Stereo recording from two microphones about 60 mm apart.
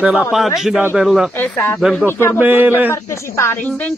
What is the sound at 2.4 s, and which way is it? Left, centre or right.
Speech, right.